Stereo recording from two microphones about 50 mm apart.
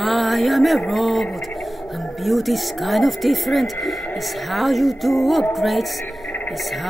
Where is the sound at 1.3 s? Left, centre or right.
Centre.